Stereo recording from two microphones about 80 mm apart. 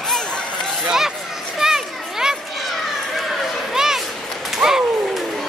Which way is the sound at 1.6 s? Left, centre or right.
Centre.